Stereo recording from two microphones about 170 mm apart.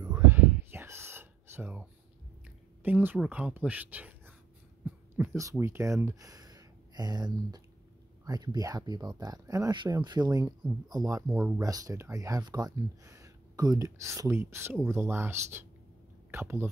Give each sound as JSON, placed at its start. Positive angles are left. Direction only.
{"t": 0.0, "sound": "whispering", "side_deg": -15}
{"t": 2.8, "sound": "speech", "side_deg": -10}